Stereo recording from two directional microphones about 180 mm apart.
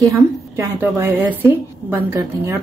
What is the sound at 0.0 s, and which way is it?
A woman's voice, 15° right (ahead or behind).